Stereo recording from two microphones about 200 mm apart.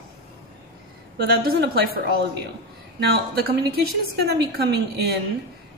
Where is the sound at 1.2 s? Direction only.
50° right (ahead or behind).